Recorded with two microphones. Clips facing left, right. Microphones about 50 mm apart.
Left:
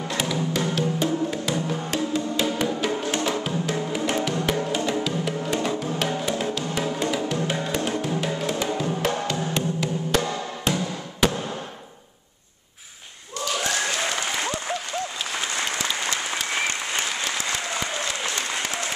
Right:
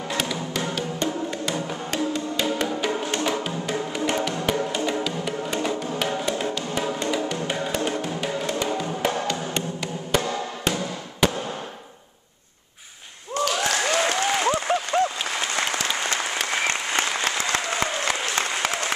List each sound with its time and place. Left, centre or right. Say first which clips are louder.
0.1 s music: left 2 dB; centre
13.7 s applause: right 3 dB; right